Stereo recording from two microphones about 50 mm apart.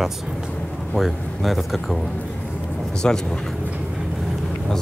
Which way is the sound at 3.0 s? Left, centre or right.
Centre.